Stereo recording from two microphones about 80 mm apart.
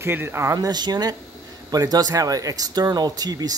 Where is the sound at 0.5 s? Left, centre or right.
Right.